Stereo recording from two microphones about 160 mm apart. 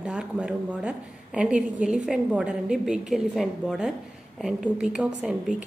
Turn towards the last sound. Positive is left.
turn(degrees=-5)  # may be behind; listen again after turning